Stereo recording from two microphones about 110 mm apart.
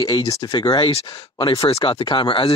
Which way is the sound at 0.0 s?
35° left (ahead or behind).